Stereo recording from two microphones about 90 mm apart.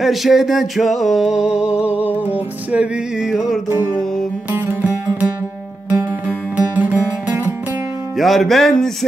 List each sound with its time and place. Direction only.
0.0 s a sound: centre (ahead or behind)
4.5 s music: 20° right (ahead or behind)
6.2 s music: 15° right (ahead or behind)
8.2 s music: centre (ahead or behind)